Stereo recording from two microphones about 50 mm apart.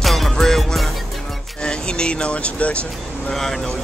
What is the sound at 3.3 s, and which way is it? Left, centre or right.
Speech, centre.